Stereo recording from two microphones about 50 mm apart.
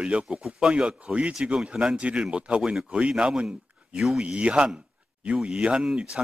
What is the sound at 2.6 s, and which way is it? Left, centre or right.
Speech, centre.